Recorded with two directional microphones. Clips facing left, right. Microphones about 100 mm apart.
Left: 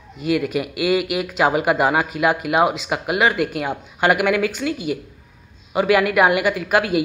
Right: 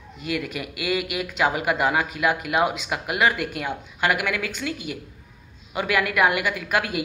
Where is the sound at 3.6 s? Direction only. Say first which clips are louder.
Left 3 dB; 35° left (ahead or behind).